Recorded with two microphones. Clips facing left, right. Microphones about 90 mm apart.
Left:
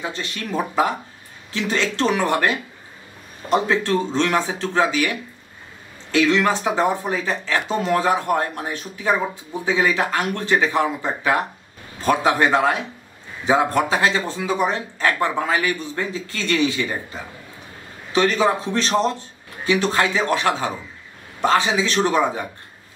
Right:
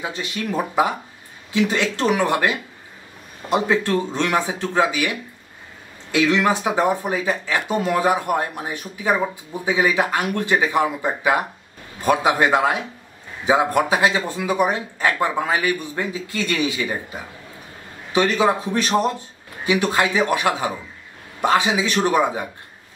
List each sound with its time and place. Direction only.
0.0 s speech: 10° right (ahead or behind)
6.1 s speech: 15° right (ahead or behind)